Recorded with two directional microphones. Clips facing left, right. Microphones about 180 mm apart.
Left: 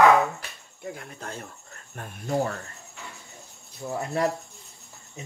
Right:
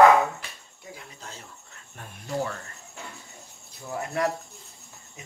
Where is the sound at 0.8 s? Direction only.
55° left (ahead or behind).